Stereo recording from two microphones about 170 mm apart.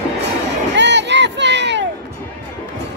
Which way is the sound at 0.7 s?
90° right.